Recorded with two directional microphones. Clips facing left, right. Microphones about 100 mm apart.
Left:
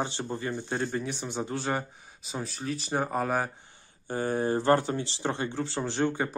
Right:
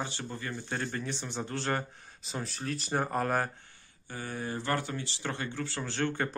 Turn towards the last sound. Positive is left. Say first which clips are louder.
# left 4 dB
turn(degrees=15)  # may be behind; listen again after turning